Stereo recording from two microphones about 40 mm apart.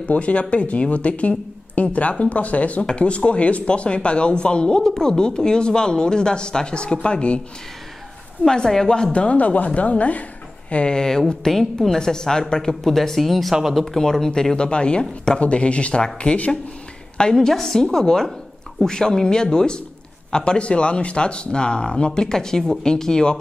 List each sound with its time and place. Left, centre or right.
0.1 s speech: left
8.5 s speech: centre; by 10.2 s left
10.7 s speech: left
17.2 s speech: centre